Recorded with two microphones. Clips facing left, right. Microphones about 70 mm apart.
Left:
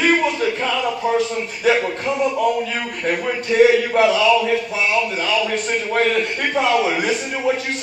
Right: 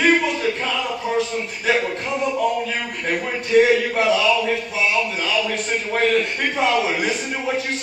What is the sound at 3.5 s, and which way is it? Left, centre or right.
A man's voice, left.